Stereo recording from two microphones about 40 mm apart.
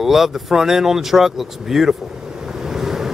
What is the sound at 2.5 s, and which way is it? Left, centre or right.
Waves, centre.